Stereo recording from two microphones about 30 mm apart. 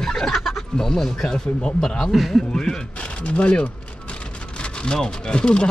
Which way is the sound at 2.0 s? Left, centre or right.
Centre.